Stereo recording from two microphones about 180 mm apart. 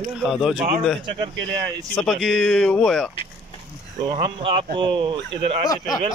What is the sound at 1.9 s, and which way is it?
Speech, centre (ahead or behind).